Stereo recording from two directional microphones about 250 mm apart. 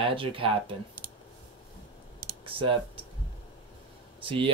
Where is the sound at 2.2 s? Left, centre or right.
Right.